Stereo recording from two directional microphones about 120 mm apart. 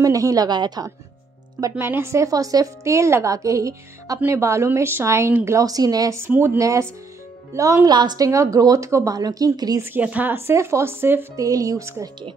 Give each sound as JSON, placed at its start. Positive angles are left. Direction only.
{"t": 0.0, "sound": "a woman's voice", "side_deg": -30}
{"t": 1.6, "sound": "a woman's voice", "side_deg": -20}
{"t": 9.8, "sound": "a woman's voice", "side_deg": -15}